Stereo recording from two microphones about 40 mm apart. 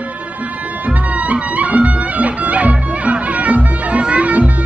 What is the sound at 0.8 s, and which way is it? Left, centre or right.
Music, right.